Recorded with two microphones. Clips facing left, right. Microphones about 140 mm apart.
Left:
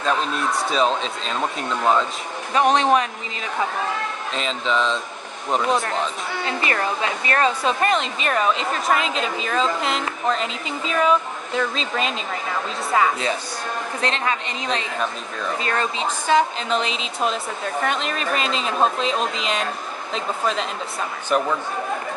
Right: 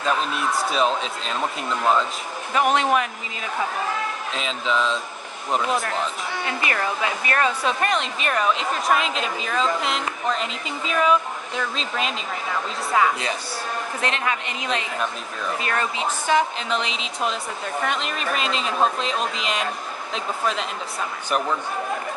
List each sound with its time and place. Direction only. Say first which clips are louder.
0.0 s a woman's voice: left 1 dB; 5° right (ahead or behind)
2.7 s speech: left 3 dB; 25° left (ahead or behind)
4.3 s a woman's voice: left 3 dB; 5° right (ahead or behind)
5.7 s a woman's voice: left 2 dB; 30° left (ahead or behind)
7.8 s a woman's voice: left 2 dB; centre (ahead or behind)
14.0 s a woman's voice: left 2 dB; 30° left (ahead or behind)
17.8 s a woman's voice: left 2 dB; centre (ahead or behind)